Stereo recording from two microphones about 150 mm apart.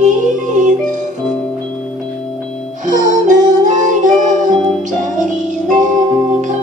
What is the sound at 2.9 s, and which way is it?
Music, 55° right (ahead or behind).